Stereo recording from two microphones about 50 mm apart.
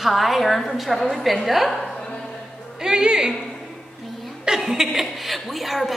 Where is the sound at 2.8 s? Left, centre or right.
Centre.